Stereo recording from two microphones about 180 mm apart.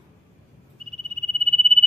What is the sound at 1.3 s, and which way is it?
Cricket, 30° right (ahead or behind).